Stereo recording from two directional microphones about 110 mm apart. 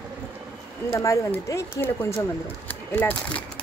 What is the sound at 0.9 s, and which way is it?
Speech, 30° left (ahead or behind).